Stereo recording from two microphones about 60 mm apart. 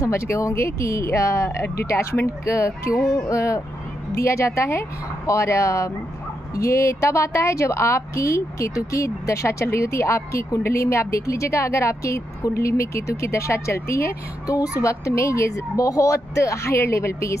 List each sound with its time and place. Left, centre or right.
0.0 s a woman's voice: left